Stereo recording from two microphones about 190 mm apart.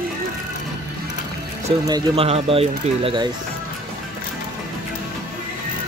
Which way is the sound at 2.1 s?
30° right (ahead or behind).